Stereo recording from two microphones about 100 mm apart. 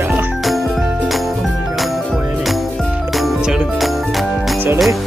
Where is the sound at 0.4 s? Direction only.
Centre (ahead or behind).